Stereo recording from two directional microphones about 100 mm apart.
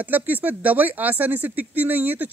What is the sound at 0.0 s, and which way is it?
Speech, 15° right (ahead or behind).